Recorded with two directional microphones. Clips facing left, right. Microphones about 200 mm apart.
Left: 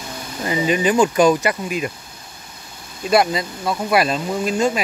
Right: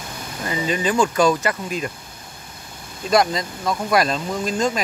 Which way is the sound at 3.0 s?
5° left (ahead or behind).